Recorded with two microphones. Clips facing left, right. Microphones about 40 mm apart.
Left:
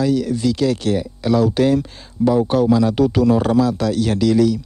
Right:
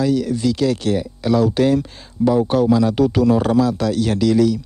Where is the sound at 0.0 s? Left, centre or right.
Centre.